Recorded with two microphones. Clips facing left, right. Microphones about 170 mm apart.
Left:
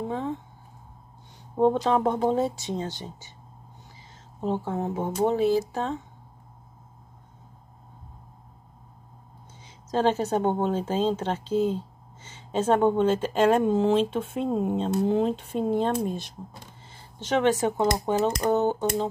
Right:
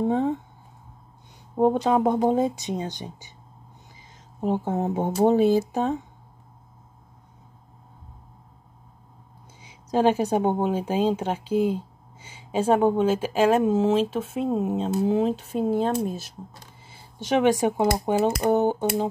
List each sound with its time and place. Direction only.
1.6 s speech: 10° right (ahead or behind)
4.4 s speech: 15° right (ahead or behind)
4.7 s speech: 30° right (ahead or behind)
9.6 s speech: 10° right (ahead or behind)